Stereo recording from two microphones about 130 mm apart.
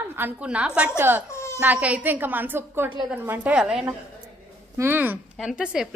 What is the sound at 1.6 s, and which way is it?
A woman's voice, 10° right (ahead or behind).